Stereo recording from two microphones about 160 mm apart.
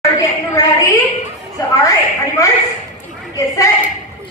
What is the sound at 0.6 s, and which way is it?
Speech, 20° left (ahead or behind).